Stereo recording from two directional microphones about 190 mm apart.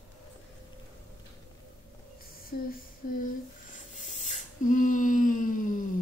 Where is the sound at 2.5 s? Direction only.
50° left (ahead or behind).